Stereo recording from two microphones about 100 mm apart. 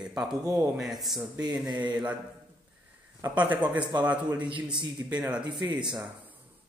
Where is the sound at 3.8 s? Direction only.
50° right (ahead or behind).